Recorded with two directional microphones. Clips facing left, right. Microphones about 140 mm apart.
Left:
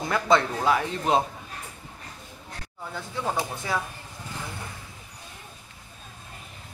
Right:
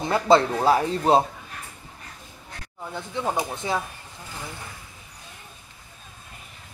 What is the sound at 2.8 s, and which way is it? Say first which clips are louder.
Speech: right 3 dB; 15° right (ahead or behind).